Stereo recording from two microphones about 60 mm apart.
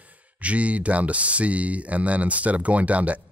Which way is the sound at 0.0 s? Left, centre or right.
Right.